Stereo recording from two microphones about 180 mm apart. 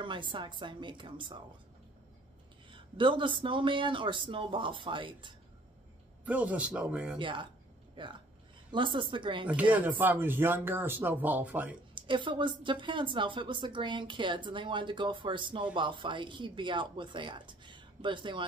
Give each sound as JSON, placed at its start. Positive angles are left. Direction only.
{"t": 0.0, "sound": "speech", "side_deg": -25}
{"t": 2.7, "sound": "speech", "side_deg": -25}
{"t": 6.2, "sound": "speech", "side_deg": -10}
{"t": 7.2, "sound": "speech", "side_deg": -25}
{"t": 9.6, "sound": "speech", "side_deg": -10}
{"t": 11.9, "sound": "speech", "side_deg": -25}